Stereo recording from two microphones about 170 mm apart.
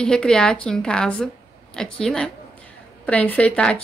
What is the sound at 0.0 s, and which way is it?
A woman's voice, 5° left (ahead or behind).